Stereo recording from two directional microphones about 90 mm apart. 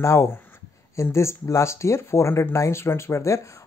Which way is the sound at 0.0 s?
35° left (ahead or behind).